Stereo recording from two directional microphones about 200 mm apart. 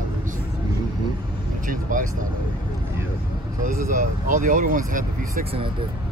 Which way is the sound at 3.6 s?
45° right (ahead or behind).